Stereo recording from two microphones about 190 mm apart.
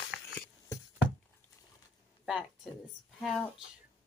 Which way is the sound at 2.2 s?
5° right (ahead or behind).